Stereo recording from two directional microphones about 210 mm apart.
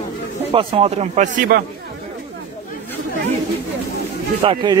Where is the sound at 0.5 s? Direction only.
25° right (ahead or behind).